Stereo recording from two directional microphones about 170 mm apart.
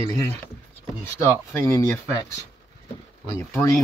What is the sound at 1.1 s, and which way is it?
Speech, 15° left (ahead or behind).